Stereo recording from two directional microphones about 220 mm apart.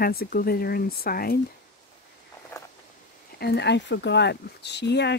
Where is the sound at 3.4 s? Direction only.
50° left (ahead or behind).